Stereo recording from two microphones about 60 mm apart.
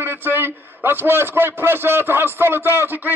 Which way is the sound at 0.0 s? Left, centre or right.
Right.